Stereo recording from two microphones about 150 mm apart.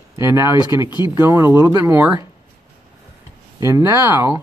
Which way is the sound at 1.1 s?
15° right (ahead or behind).